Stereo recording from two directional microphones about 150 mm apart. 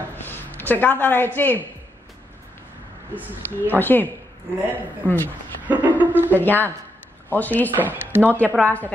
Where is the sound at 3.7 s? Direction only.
15° left (ahead or behind).